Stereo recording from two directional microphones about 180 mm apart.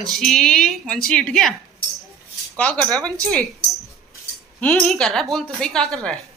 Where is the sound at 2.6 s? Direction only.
5° left (ahead or behind).